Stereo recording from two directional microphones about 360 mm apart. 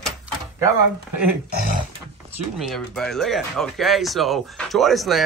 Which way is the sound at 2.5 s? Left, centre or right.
Centre.